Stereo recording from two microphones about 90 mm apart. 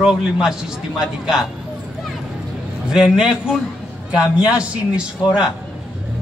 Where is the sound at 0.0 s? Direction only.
5° right (ahead or behind).